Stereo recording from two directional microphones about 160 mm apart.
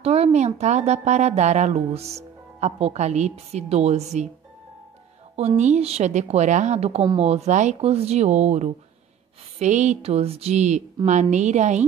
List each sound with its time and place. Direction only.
0.0 s a woman's voice: 40° right (ahead or behind)
5.6 s a woman's voice: 45° right (ahead or behind)